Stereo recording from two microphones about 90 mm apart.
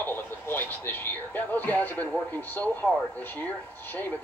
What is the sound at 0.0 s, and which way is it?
Speech, 20° left (ahead or behind).